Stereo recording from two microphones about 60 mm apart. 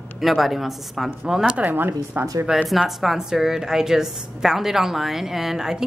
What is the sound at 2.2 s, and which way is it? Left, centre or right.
Speech, right.